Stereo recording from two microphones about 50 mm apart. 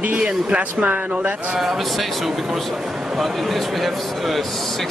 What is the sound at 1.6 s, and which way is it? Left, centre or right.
A man's voice, centre.